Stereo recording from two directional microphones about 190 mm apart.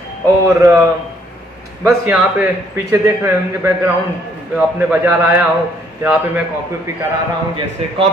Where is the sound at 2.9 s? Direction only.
15° right (ahead or behind).